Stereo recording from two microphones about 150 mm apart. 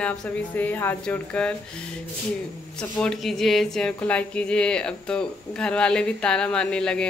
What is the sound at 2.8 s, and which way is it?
Speech, 5° left (ahead or behind).